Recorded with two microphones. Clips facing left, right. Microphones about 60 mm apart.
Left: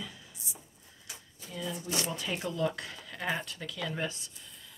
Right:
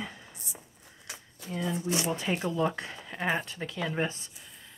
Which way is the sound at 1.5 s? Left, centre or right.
Right.